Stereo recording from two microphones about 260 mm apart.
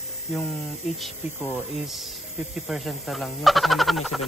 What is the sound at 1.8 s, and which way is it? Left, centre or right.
Speech, centre.